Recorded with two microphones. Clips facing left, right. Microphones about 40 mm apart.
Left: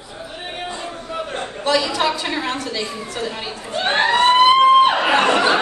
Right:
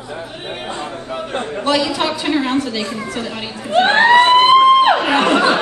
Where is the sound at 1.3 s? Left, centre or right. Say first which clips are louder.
Right 2 dB; right.